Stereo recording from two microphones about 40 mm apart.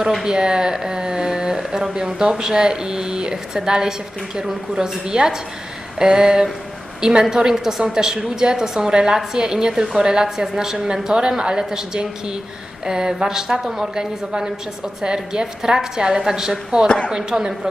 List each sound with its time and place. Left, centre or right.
0.2 s speech: centre
11.1 s speech: right